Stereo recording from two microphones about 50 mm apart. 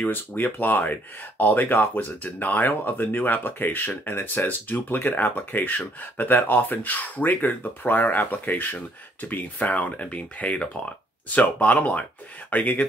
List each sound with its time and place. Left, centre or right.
0.1 s speech: left